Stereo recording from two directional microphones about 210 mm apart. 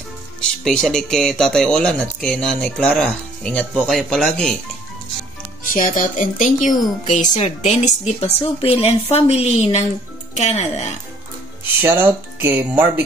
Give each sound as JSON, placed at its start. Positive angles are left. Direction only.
{"t": 0.7, "sound": "speech", "side_deg": 0}
{"t": 5.7, "sound": "speech", "side_deg": 40}
{"t": 11.8, "sound": "speech", "side_deg": -10}